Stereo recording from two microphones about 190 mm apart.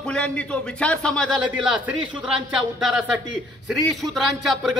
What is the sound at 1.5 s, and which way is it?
A man's voice, 5° right (ahead or behind).